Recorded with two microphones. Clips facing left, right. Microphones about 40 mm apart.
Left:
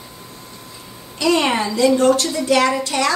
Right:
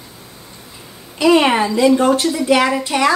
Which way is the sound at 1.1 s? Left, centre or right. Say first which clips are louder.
Right 5 dB; centre.